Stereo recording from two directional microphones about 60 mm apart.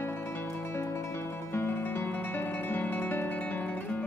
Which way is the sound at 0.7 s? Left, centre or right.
Left.